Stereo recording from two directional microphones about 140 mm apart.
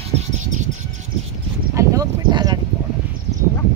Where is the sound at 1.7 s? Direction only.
25° right (ahead or behind).